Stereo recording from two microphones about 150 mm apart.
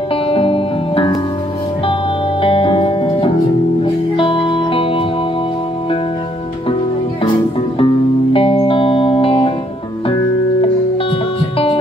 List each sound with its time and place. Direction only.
0.3 s music: 35° left (ahead or behind)
2.4 s music: 35° left (ahead or behind)
7.8 s music: 35° left (ahead or behind)
11.5 s music: 40° left (ahead or behind)